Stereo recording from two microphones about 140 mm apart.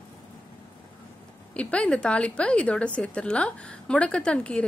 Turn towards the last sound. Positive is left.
turn(degrees=10)  # may be behind; listen again after turning